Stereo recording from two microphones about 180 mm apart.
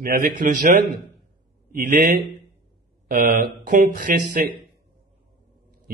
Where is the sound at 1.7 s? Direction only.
50° right (ahead or behind).